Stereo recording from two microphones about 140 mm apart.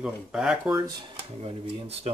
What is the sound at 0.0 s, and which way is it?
Speech, 5° right (ahead or behind).